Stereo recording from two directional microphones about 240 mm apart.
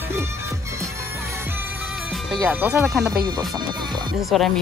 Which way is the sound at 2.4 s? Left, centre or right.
Centre.